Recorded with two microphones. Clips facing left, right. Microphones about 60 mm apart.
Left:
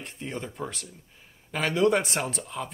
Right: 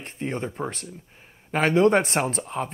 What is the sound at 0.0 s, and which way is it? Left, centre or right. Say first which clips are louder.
Speech: right 6 dB; right.